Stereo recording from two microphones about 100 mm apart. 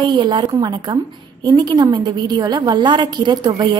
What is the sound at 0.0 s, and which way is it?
A woman's voice, 50° right (ahead or behind).